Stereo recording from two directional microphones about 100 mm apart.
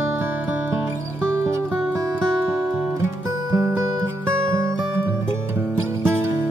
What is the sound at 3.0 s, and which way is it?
Music, 30° right (ahead or behind).